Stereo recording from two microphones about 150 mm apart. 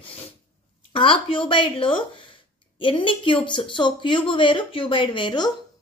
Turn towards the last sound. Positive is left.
turn(degrees=30)  # may be behind; listen again after turning